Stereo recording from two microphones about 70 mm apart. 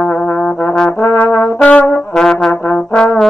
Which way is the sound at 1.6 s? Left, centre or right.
Left.